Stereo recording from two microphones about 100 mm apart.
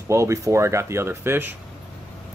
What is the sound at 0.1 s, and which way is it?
Speech, 30° right (ahead or behind).